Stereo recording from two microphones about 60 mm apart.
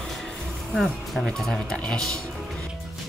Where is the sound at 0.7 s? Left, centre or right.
Centre.